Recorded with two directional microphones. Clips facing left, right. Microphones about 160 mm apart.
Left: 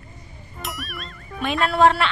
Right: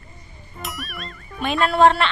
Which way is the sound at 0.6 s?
Centre (ahead or behind).